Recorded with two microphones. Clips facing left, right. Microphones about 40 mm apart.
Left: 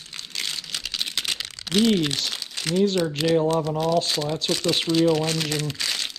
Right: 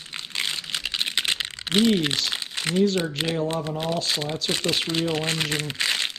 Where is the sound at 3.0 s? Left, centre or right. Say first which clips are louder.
Left 4 dB; right.